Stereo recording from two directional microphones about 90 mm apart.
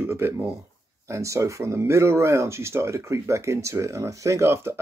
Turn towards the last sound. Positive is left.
turn(degrees=-30)  # may be behind; listen again after turning